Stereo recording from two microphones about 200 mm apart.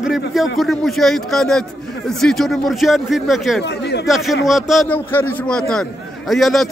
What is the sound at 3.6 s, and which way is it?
Speech, 55° left (ahead or behind).